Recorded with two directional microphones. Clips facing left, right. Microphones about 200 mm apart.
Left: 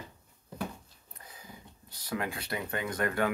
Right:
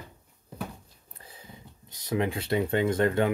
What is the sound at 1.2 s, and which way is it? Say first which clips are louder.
Speech: right 1 dB; 30° right (ahead or behind).